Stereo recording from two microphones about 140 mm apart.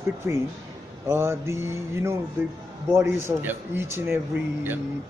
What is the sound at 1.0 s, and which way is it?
Mantra, 20° right (ahead or behind).